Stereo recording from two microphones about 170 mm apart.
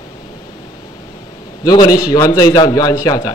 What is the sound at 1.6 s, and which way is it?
A man's voice, 25° left (ahead or behind).